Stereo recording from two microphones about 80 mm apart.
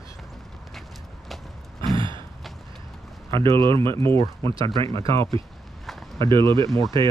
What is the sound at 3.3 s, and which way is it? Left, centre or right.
Speech, right.